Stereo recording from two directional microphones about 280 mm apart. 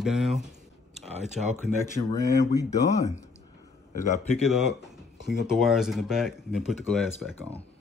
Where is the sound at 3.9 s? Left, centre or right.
Left.